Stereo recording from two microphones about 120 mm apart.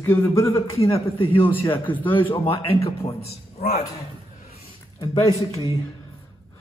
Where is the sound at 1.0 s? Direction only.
50° left (ahead or behind).